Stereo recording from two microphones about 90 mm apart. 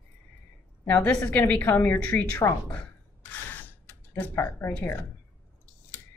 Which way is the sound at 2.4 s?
40° left (ahead or behind).